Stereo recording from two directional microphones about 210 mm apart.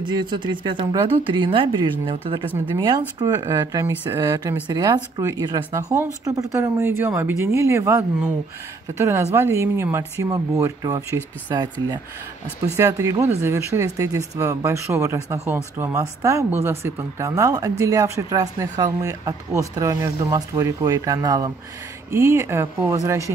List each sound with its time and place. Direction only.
0.0 s speech: 20° right (ahead or behind)